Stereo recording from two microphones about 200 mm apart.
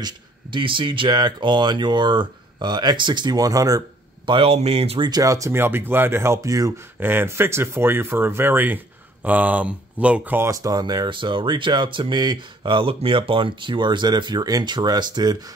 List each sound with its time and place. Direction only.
0.0 s speech: 25° right (ahead or behind)
4.3 s speech: 30° right (ahead or behind)